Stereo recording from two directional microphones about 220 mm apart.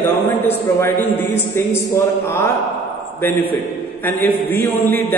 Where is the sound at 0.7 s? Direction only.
10° left (ahead or behind).